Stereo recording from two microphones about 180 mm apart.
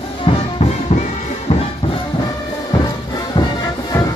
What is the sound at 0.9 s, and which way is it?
Music, 45° left (ahead or behind).